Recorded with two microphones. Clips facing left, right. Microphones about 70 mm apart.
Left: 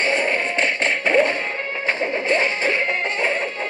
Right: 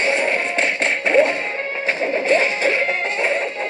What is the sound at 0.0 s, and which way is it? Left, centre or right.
Music, centre.